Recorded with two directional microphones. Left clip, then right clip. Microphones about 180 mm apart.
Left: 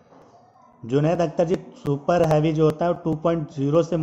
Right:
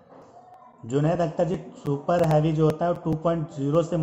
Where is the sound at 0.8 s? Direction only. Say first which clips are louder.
Left 3 dB; 45° left (ahead or behind).